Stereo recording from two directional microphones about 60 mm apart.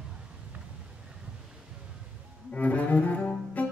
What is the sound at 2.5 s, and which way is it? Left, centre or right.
Cello, left.